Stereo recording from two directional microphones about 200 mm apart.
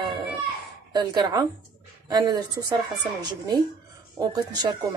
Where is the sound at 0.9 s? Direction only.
20° right (ahead or behind).